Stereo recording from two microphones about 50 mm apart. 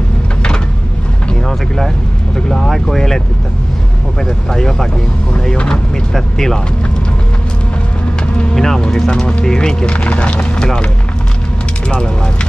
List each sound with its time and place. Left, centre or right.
2.3 s speech: centre
4.2 s speech: centre
6.1 s speech: centre
8.5 s vehicle: centre
8.9 s speech: centre